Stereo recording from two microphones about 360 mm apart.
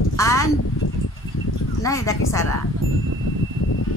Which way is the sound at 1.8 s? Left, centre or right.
Centre.